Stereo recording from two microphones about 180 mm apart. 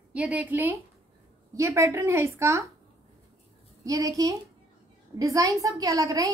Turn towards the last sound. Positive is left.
turn(degrees=-20)  # may be behind; listen again after turning